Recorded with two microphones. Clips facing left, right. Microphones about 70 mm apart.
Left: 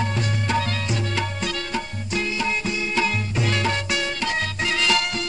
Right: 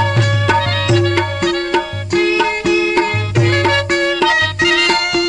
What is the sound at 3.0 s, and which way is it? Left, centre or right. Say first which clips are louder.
Music: right 8 dB; right.